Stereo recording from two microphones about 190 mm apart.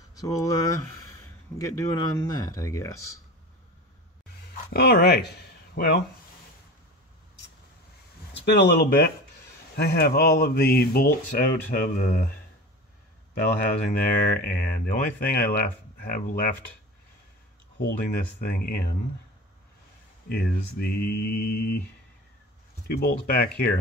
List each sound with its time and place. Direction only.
0.1 s speech: 20° left (ahead or behind)
4.7 s speech: 55° left (ahead or behind)
8.3 s speech: 60° left (ahead or behind)
14.0 s speech: 50° left (ahead or behind)
17.7 s speech: 50° left (ahead or behind)
20.2 s speech: 55° left (ahead or behind)
22.8 s speech: 50° left (ahead or behind)